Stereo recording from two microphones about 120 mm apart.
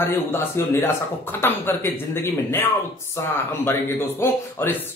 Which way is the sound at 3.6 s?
20° left (ahead or behind).